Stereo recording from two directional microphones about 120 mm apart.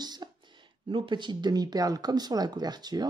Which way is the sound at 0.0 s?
35° right (ahead or behind).